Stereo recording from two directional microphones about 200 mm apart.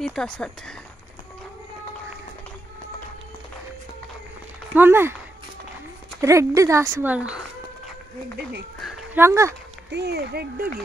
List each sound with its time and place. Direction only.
0.0 s speech: 5° left (ahead or behind)
4.7 s speech: 10° right (ahead or behind)
6.2 s speech: 15° right (ahead or behind)
8.8 s a sound: centre (ahead or behind)
9.2 s speech: 15° right (ahead or behind)
9.8 s speech: 55° right (ahead or behind)